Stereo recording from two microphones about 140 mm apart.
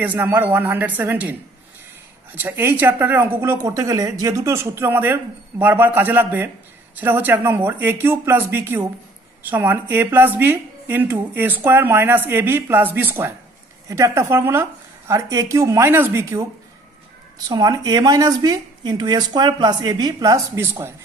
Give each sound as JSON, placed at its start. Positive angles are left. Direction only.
{"t": 0.0, "sound": "a woman's voice", "side_deg": -10}
{"t": 17.5, "sound": "speech", "side_deg": -25}